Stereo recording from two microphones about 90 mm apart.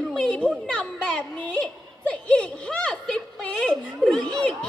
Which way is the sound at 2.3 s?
15° left (ahead or behind).